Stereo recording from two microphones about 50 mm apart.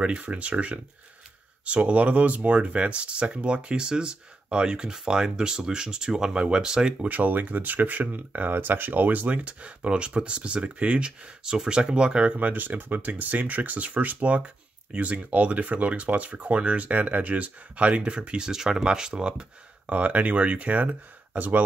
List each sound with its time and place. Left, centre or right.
0.0 s speech: right
7.1 s speech: right; by 19.4 s centre
19.9 s speech: right